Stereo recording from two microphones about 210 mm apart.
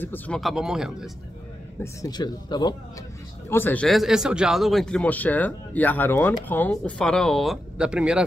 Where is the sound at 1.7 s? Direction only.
20° left (ahead or behind).